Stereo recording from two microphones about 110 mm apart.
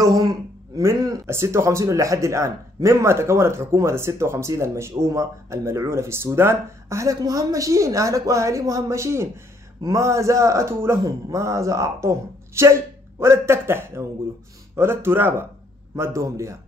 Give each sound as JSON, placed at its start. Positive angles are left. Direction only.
{"t": 0.0, "sound": "speech", "side_deg": -30}